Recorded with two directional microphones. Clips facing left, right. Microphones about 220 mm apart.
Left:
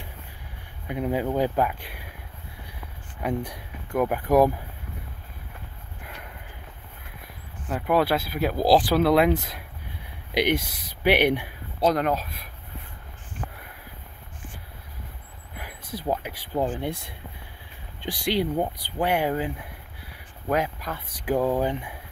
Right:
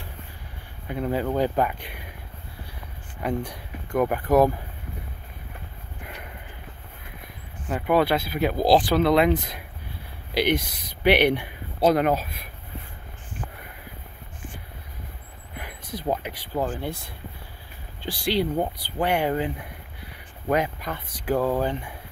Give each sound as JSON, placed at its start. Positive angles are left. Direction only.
{"t": 0.8, "sound": "speech", "side_deg": 10}
{"t": 3.2, "sound": "speech", "side_deg": 10}
{"t": 7.6, "sound": "speech", "side_deg": 0}
{"t": 11.8, "sound": "speech", "side_deg": -5}
{"t": 15.5, "sound": "a sound", "side_deg": 5}
{"t": 16.5, "sound": "speech", "side_deg": 20}
{"t": 18.2, "sound": "speech", "side_deg": 15}
{"t": 21.4, "sound": "speech", "side_deg": 15}